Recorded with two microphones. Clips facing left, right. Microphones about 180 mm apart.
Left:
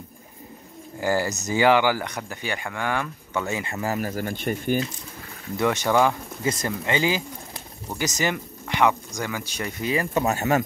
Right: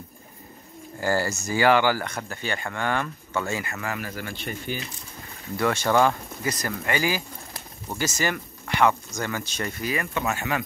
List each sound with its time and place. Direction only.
0.9 s speech: 15° left (ahead or behind)
3.8 s speech: 40° left (ahead or behind)
5.6 s speech: 20° left (ahead or behind)
6.4 s speech: 25° left (ahead or behind)
10.1 s speech: 40° left (ahead or behind)